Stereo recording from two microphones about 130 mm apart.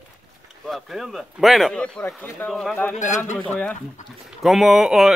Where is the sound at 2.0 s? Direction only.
20° left (ahead or behind).